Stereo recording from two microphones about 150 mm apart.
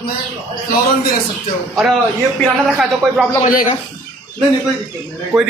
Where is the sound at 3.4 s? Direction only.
60° left (ahead or behind).